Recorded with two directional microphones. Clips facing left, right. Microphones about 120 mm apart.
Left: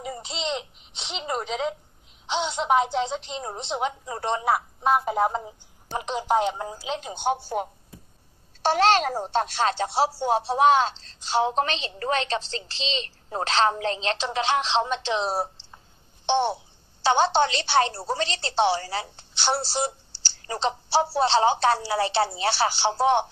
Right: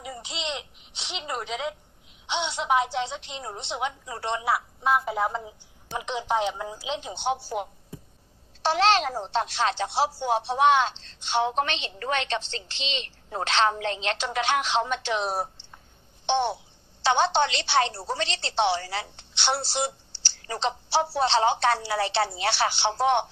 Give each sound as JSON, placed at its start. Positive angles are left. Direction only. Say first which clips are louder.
{"t": 0.0, "sound": "babbling", "louder": "left 3 dB", "side_deg": 35}
{"t": 2.2, "sound": "speech", "louder": "left 2 dB", "side_deg": 35}
{"t": 8.6, "sound": "speech", "louder": "left 2 dB", "side_deg": 45}